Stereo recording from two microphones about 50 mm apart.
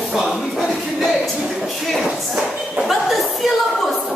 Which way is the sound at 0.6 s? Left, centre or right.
Centre.